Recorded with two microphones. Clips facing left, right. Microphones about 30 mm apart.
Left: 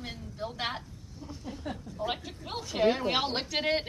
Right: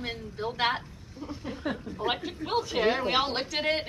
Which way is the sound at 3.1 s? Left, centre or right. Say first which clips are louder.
Right 2 dB; centre.